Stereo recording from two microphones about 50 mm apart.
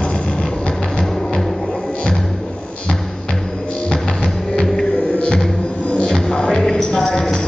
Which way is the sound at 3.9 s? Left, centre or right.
Centre.